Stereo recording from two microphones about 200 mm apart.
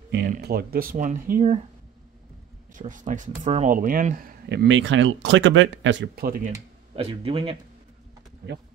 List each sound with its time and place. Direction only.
0.3 s speech: 50° right (ahead or behind)
2.7 s speech: 40° right (ahead or behind)
7.0 s speech: 30° right (ahead or behind)
8.4 s speech: 50° right (ahead or behind)